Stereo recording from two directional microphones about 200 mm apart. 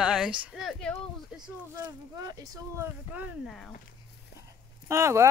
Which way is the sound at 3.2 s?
Centre (ahead or behind).